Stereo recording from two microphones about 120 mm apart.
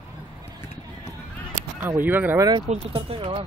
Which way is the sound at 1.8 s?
15° right (ahead or behind).